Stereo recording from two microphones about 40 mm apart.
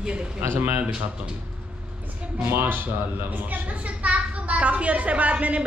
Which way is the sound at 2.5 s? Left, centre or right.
Right.